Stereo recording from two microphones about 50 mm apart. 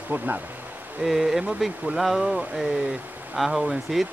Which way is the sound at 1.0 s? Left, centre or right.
Centre.